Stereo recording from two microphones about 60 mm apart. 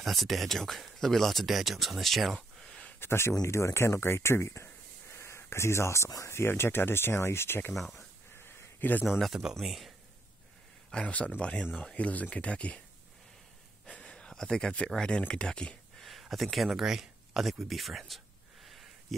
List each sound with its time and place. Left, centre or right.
0.0 s speech: centre
3.0 s speech: left
5.1 s a sound: left
6.0 s speech: left
6.3 s speech: left
7.7 s speech: centre
8.4 s a sound: left
9.4 s speech: centre
10.9 s speech: centre
13.8 s a sound: centre
15.0 s speech: centre
16.0 s a sound: centre